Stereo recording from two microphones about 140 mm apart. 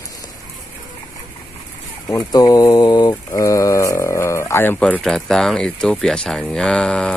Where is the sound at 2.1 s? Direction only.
25° left (ahead or behind).